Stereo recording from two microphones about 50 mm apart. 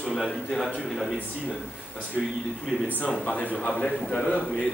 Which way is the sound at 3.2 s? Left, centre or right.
Left.